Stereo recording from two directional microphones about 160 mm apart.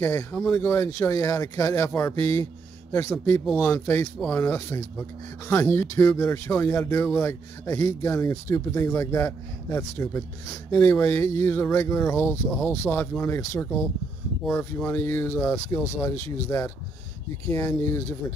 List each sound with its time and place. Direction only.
0.0 s speech: 15° left (ahead or behind)
3.4 s speech: 5° left (ahead or behind)
3.7 s speech: 15° left (ahead or behind)
12.4 s speech: centre (ahead or behind)
12.7 s speech: 15° left (ahead or behind)